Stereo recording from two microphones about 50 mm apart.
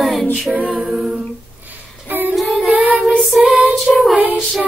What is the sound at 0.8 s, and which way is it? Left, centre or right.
Humming, centre.